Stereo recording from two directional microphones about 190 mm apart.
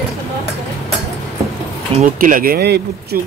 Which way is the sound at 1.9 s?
45° right (ahead or behind).